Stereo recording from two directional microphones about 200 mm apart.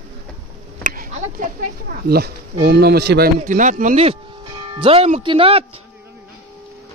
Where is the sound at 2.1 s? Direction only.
55° right (ahead or behind); by 5.6 s 30° right (ahead or behind).